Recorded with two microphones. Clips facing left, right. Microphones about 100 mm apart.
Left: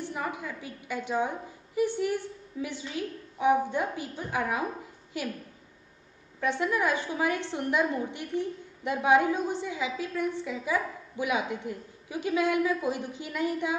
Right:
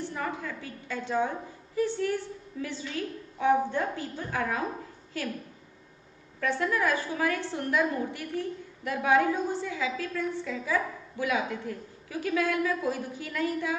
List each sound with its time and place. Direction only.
0.0 s a sound: 15° left (ahead or behind)
1.8 s a woman's voice: 15° left (ahead or behind)
6.4 s a woman's voice: 20° left (ahead or behind)